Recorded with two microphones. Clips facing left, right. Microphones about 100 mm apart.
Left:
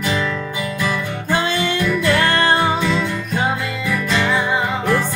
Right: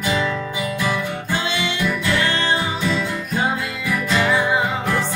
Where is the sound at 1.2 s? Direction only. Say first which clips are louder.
Left 8 dB; 45° left (ahead or behind).